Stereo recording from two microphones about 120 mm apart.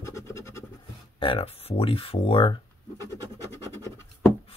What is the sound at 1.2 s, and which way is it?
Speech, 50° left (ahead or behind).